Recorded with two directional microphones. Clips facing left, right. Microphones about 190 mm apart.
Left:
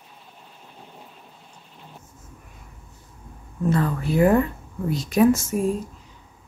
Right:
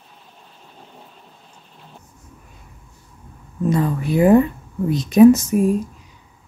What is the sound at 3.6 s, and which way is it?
Speech, 15° right (ahead or behind).